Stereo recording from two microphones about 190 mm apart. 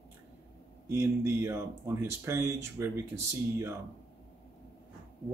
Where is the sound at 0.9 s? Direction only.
15° right (ahead or behind).